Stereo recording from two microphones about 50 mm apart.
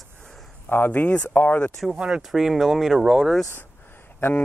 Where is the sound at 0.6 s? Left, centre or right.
Left.